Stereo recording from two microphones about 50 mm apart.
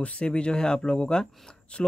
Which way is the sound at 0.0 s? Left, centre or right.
Left.